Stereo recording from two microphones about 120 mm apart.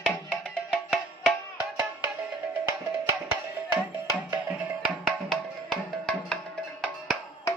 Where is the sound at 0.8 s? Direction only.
Centre (ahead or behind).